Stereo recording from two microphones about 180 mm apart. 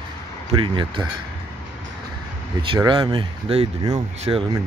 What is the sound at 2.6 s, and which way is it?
Speech, 25° right (ahead or behind).